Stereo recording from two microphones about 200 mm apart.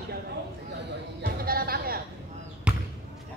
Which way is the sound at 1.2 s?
50° right (ahead or behind).